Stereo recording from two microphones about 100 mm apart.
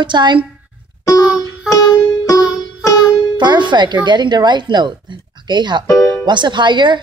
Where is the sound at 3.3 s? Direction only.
50° right (ahead or behind).